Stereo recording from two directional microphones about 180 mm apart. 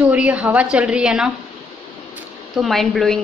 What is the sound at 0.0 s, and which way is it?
A woman's voice, 10° right (ahead or behind).